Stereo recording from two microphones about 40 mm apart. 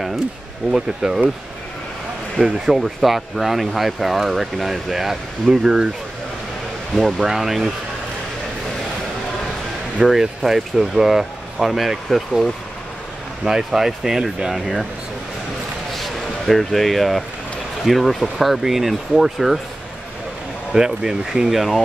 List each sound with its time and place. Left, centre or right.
0.7 s speech: centre
2.3 s speech: centre
7.2 s speech: centre
10.0 s speech: centre
13.5 s speech: centre
15.9 s a sound: centre
17.8 s speech: centre
20.7 s speech: centre